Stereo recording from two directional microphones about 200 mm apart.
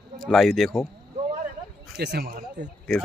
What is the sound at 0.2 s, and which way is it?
Speech, centre (ahead or behind).